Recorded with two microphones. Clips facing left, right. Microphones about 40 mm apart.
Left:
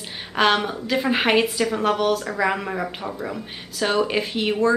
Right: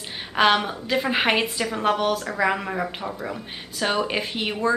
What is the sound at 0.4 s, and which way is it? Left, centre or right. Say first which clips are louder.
Speech: even; centre.